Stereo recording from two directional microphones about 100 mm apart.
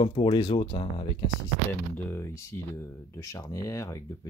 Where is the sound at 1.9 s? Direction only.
25° left (ahead or behind).